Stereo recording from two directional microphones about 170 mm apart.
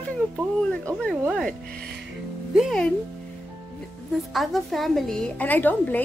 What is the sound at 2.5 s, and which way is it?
Speech, centre (ahead or behind).